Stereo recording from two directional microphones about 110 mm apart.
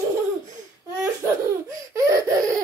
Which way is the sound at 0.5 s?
25° right (ahead or behind).